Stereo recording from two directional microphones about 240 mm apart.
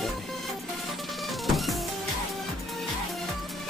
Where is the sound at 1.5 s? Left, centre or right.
Centre.